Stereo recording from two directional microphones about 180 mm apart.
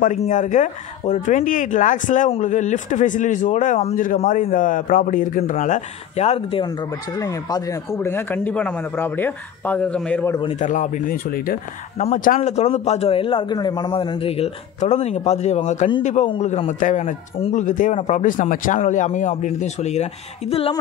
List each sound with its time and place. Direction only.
0.0 s speech: 40° left (ahead or behind); by 10.3 s 5° left (ahead or behind)
10.5 s a man's voice: 45° left (ahead or behind)